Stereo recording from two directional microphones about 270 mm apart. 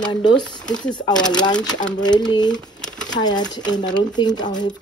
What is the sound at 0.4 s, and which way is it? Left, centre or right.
Speech, centre.